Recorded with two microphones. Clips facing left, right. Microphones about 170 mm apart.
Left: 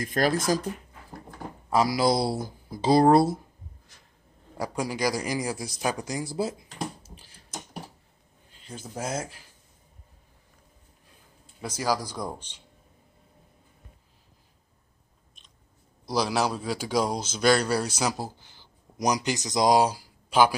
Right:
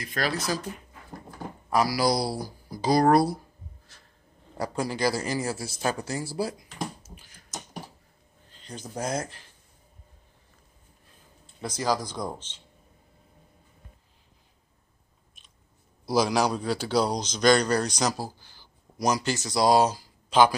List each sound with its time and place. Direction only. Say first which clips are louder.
0.0 s speech: left 5 dB; 45° left (ahead or behind)
1.7 s speech: left 1 dB; 25° left (ahead or behind)
4.6 s a man's voice: right 1 dB; 10° left (ahead or behind)
7.0 s typing: even; 30° left (ahead or behind)
8.5 s a sound: right 1 dB; 5° left (ahead or behind)
8.9 s a man's voice: right 2 dB; 5° left (ahead or behind)
11.4 s a man's voice: even; 10° left (ahead or behind)
16.1 s a man's voice: right 2 dB; centre (ahead or behind)
18.1 s speech: even; 20° left (ahead or behind)